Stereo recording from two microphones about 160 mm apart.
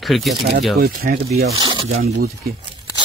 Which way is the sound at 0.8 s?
70° right (ahead or behind).